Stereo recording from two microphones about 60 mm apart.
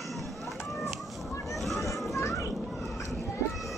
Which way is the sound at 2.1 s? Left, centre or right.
Left.